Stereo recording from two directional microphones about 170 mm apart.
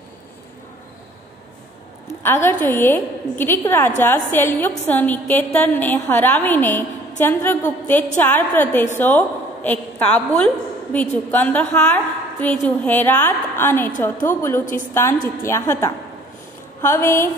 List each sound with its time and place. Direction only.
2.0 s a woman's voice: 15° left (ahead or behind)